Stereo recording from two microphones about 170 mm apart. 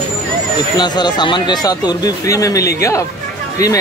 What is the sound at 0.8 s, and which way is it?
Speech, 25° left (ahead or behind).